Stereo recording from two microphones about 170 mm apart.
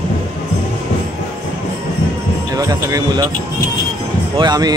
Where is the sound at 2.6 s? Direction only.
20° right (ahead or behind).